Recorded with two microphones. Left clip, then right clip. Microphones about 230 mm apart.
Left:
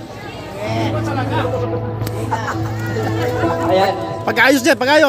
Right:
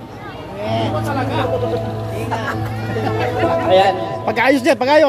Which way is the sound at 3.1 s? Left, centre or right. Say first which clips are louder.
Right 2 dB; right.